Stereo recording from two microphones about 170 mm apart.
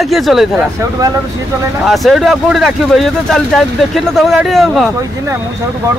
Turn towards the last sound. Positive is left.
turn(degrees=0)  # may be behind; listen again after turning